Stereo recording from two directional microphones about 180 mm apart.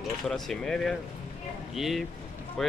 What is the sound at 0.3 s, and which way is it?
Speech, centre (ahead or behind).